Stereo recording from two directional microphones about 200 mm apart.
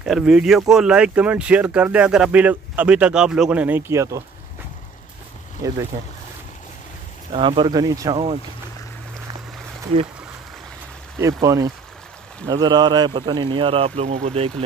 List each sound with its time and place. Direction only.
0.0 s speech: 5° right (ahead or behind)
5.6 s speech: 15° right (ahead or behind)
7.3 s speech: 25° right (ahead or behind)
11.1 s speech: 15° right (ahead or behind)